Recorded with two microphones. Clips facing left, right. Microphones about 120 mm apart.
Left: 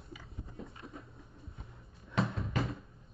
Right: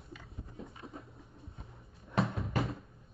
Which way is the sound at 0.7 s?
25° right (ahead or behind).